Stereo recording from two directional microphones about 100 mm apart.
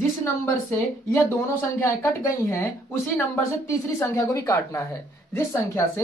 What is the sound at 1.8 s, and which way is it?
Speech, 25° left (ahead or behind).